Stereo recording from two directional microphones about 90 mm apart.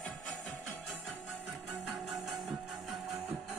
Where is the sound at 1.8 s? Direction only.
Centre (ahead or behind).